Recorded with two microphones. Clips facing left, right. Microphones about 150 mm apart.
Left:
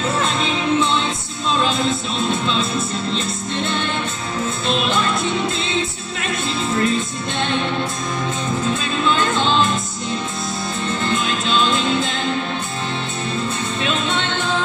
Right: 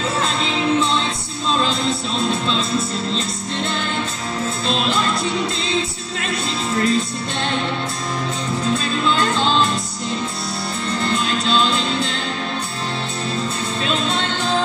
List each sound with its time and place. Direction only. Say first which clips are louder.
0.3 s music: even; 35° right (ahead or behind)
3.2 s music: left 1 dB; 35° right (ahead or behind)
6.3 s music: left 1 dB; 35° right (ahead or behind)
13.8 s music: right 1 dB; 35° right (ahead or behind)